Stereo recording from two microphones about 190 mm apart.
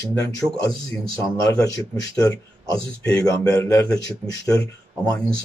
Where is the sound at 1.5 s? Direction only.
15° left (ahead or behind).